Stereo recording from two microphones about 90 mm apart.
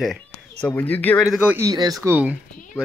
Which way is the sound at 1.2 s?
5° right (ahead or behind).